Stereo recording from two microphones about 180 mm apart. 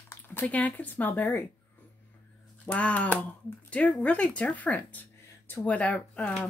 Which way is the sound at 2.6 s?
5° left (ahead or behind).